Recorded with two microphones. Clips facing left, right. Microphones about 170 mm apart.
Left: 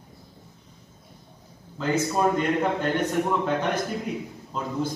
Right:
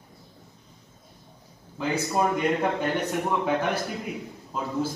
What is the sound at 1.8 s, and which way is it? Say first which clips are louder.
A man's voice: left 2 dB; 10° right (ahead or behind).